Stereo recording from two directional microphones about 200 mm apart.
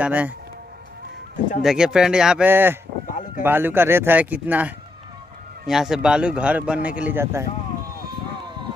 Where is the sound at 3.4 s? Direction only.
10° right (ahead or behind).